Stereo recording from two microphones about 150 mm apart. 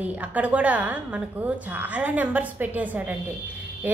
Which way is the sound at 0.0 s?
10° right (ahead or behind).